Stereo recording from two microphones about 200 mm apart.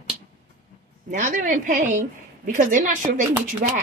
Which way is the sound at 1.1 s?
40° right (ahead or behind).